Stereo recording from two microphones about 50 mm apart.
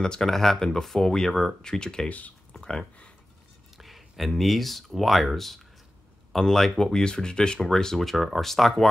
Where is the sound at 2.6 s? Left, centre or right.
Centre.